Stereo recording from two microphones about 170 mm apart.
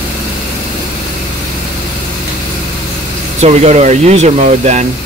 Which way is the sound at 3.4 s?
40° right (ahead or behind).